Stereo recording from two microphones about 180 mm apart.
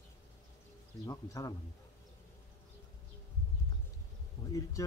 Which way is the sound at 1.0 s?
20° left (ahead or behind).